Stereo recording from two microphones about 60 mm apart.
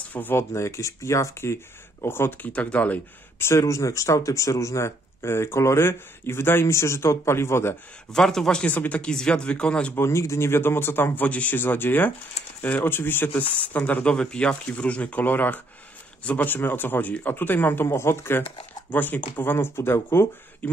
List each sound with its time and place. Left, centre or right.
0.1 s speech: left
0.4 s speech: left
2.4 s speech: left
3.3 s speech: left
8.1 s speech: centre
8.6 s speech: left
9.9 s speech: left
11.2 s speech: left
11.5 s speech: left
14.1 s speech: centre; by 17.8 s left
17.8 s speech: left
18.9 s speech: left
20.6 s speech: left